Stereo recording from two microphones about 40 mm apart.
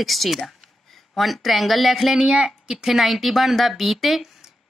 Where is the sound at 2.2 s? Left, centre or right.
Right.